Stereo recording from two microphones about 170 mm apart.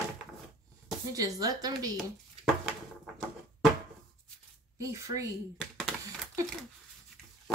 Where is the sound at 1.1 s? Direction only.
20° right (ahead or behind).